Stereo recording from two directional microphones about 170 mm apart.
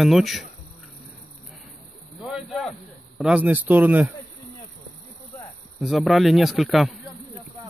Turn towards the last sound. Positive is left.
turn(degrees=-5)  # may be behind; listen again after turning